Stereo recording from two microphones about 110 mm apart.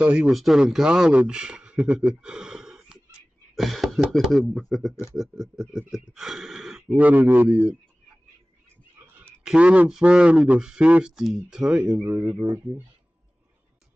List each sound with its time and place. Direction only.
0.0 s speech: 10° right (ahead or behind)
7.0 s speech: 15° right (ahead or behind)
9.0 s a sound: 20° right (ahead or behind)
9.4 s speech: 10° right (ahead or behind)
12.0 s speech: 20° right (ahead or behind)